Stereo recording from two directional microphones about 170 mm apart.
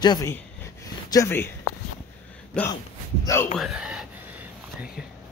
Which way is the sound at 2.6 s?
5° left (ahead or behind).